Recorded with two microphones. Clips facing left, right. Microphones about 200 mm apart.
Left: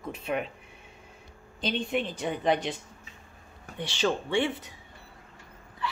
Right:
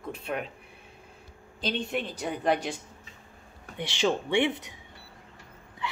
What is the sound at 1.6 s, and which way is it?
Speech, centre (ahead or behind).